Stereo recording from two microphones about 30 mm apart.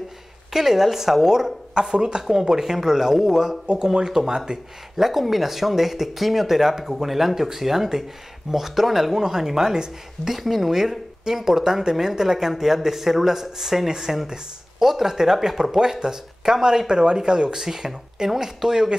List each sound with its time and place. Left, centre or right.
0.5 s speech: centre
2.4 s speech: centre
4.5 s speech: right
4.9 s speech: centre